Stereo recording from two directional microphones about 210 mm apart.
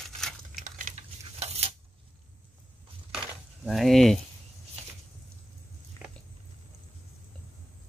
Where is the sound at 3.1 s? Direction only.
Centre (ahead or behind).